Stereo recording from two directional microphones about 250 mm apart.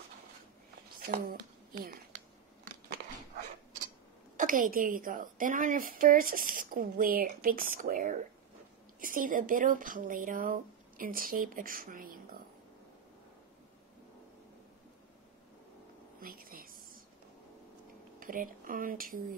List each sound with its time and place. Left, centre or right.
0.9 s speech: right
4.4 s a woman's voice: right
16.2 s a sound: right
18.2 s a woman's voice: right